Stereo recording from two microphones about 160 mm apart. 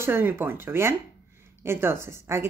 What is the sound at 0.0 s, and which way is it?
A woman's voice, 15° right (ahead or behind).